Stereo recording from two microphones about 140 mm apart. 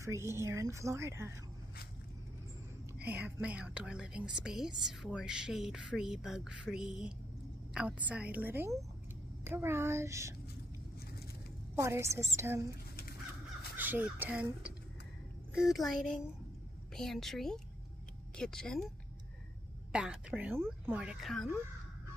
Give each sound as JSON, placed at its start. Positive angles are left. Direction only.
{"t": 0.0, "sound": "a woman's voice", "side_deg": -20}
{"t": 3.0, "sound": "a woman's voice", "side_deg": -10}
{"t": 11.7, "sound": "a woman's voice", "side_deg": -20}
{"t": 13.7, "sound": "speech", "side_deg": -10}
{"t": 19.9, "sound": "a woman's voice", "side_deg": -10}